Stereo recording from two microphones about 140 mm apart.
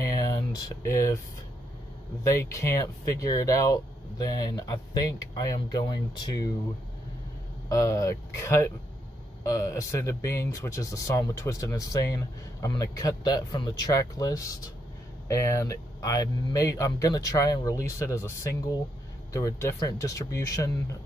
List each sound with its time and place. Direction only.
0.0 s a sound: 25° left (ahead or behind)
2.2 s speech: 20° left (ahead or behind)
7.7 s speech: 25° left (ahead or behind)